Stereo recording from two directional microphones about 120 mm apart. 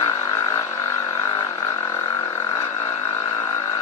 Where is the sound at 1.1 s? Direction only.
25° left (ahead or behind).